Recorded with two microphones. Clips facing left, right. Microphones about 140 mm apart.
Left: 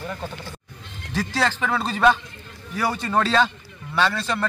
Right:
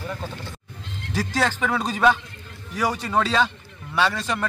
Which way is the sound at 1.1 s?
10° right (ahead or behind).